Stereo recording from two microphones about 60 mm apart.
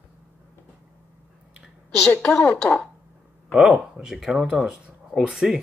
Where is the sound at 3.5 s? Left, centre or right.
Centre.